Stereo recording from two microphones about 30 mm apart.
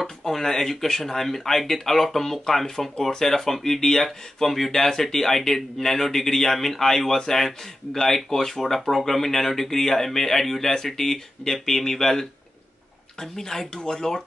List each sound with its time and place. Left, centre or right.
0.3 s speech: centre